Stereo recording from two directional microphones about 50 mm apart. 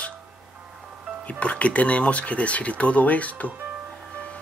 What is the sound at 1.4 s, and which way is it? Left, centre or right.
Speech, left.